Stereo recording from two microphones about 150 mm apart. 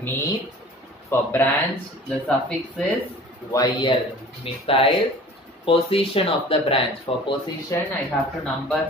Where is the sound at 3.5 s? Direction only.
30° left (ahead or behind).